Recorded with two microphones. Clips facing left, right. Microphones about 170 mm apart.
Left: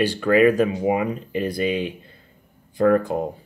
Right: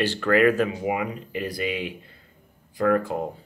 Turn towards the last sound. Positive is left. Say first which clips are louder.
# left 4 dB
turn(degrees=20)  # may be behind; listen again after turning